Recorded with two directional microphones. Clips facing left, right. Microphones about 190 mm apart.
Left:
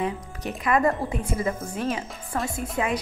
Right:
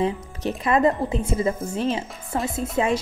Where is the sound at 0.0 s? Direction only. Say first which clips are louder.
Right 5 dB; 30° right (ahead or behind).